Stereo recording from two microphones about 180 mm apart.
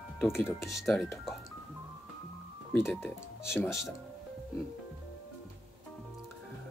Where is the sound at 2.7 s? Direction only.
10° left (ahead or behind).